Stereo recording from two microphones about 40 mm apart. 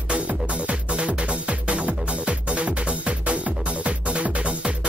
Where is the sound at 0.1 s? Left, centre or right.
Right.